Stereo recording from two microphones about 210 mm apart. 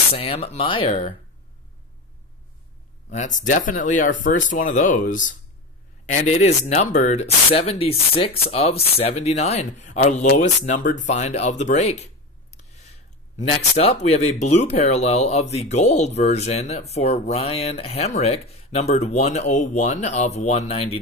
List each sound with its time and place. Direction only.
0.1 s speech: 30° left (ahead or behind)
3.1 s speech: 35° left (ahead or behind)
13.4 s speech: 30° left (ahead or behind)